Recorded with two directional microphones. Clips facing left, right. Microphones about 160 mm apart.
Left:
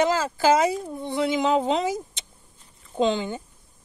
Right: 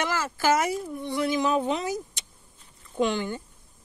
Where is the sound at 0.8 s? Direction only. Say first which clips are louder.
Left 2 dB; 20° left (ahead or behind).